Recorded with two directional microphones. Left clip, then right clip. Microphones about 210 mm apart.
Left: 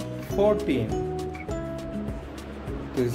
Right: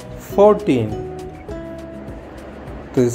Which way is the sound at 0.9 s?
Centre (ahead or behind).